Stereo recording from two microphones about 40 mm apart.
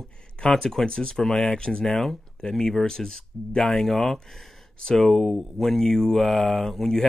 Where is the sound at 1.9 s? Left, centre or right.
Centre.